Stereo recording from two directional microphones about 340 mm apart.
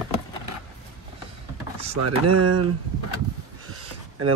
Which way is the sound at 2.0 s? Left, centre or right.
Right.